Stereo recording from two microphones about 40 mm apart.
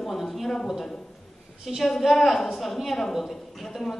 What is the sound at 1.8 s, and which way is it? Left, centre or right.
A woman's voice, centre.